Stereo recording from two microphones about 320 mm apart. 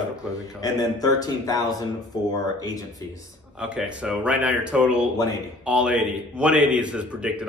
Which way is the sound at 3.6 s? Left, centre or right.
Centre.